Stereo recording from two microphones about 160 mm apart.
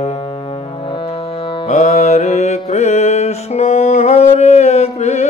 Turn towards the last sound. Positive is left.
turn(degrees=40)  # may be behind; listen again after turning